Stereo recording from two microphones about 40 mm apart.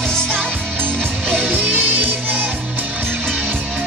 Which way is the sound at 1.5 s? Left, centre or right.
Right.